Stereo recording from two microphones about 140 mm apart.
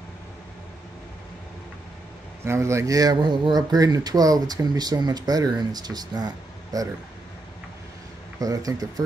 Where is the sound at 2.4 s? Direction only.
20° right (ahead or behind).